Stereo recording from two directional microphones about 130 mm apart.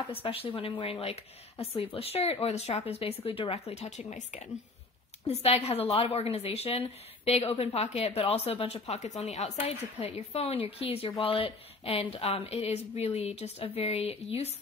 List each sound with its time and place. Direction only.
0.1 s a woman's voice: 45° left (ahead or behind); by 4.5 s 65° left (ahead or behind)
5.2 s a woman's voice: 55° left (ahead or behind)